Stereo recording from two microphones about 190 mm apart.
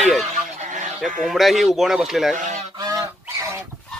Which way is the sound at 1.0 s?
Centre (ahead or behind).